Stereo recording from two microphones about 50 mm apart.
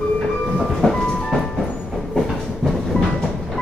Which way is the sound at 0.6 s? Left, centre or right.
Centre.